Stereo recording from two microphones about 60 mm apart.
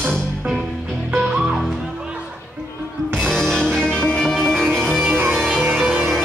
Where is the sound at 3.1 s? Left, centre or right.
Centre.